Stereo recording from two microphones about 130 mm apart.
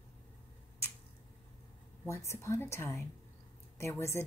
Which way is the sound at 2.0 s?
20° left (ahead or behind).